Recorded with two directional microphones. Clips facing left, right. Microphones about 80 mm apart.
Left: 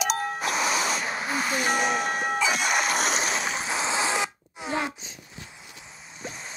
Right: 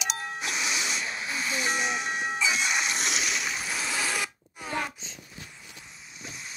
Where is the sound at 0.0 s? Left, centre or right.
Left; by 4.9 s centre.